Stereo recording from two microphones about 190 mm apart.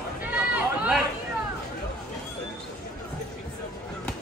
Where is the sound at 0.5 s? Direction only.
5° right (ahead or behind).